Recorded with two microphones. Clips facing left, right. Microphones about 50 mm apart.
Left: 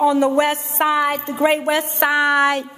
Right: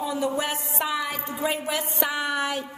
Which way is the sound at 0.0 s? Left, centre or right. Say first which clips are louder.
Left 11 dB; left.